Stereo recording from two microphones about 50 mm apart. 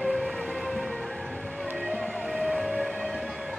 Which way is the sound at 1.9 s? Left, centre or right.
Centre.